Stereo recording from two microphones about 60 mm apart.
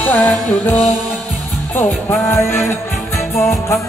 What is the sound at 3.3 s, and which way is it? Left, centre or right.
Music, left.